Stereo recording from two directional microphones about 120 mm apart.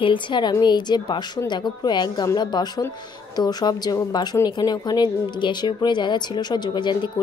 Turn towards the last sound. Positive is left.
turn(degrees=40)  # may be behind; listen again after turning